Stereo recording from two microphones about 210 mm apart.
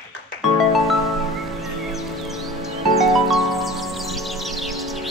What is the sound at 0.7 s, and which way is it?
Music, centre (ahead or behind).